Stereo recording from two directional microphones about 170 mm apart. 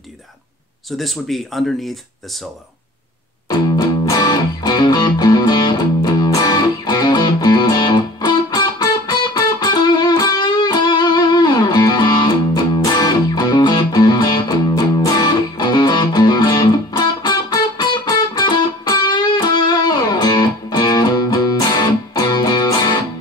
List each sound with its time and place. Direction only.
0.9 s speech: centre (ahead or behind)
3.4 s music: 20° left (ahead or behind)